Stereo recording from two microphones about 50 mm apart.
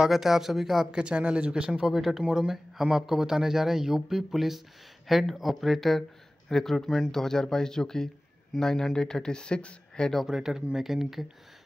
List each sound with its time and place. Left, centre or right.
0.0 s speech: centre
1.0 s speech: right
1.7 s speech: centre; by 10.1 s left
10.2 s speech: centre